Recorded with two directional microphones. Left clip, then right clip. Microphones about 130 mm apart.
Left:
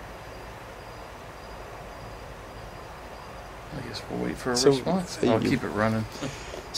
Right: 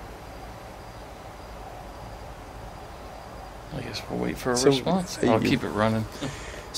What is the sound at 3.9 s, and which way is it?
Speech, 30° right (ahead or behind).